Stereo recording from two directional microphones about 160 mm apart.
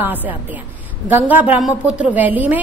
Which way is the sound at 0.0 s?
10° right (ahead or behind).